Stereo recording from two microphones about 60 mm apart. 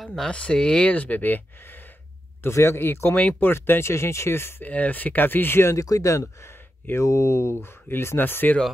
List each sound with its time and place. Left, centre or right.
0.0 s speech: centre
0.3 s speech: centre
2.4 s speech: left
4.6 s speech: left
5.6 s speech: left
5.9 s speech: left